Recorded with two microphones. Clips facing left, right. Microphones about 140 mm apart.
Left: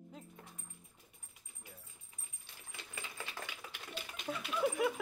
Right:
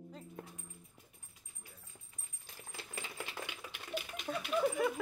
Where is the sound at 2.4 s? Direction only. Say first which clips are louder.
Right 4 dB; 35° right (ahead or behind).